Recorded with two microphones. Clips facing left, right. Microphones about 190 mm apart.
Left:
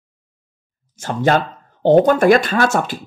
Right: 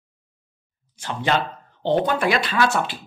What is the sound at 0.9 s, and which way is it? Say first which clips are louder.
Speech: left 6 dB; 45° left (ahead or behind).